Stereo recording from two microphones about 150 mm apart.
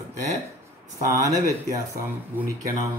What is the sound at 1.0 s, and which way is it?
Speech, 20° right (ahead or behind).